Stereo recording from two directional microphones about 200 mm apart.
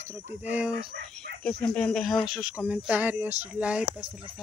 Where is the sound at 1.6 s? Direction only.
5° left (ahead or behind).